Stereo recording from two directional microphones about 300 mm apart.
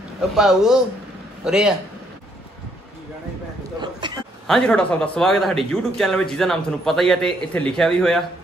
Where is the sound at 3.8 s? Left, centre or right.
Centre.